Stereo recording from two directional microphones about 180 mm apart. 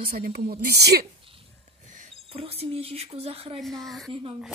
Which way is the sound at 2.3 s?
30° right (ahead or behind).